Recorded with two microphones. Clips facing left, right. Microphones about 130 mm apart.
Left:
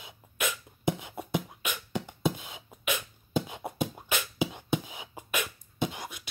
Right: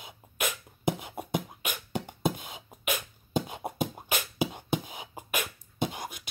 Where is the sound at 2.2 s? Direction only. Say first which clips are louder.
Even; 50° right (ahead or behind).